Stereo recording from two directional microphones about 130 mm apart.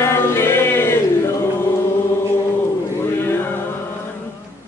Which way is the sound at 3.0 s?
20° left (ahead or behind).